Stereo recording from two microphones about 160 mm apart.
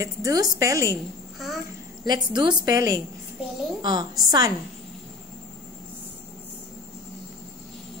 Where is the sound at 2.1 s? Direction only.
25° right (ahead or behind).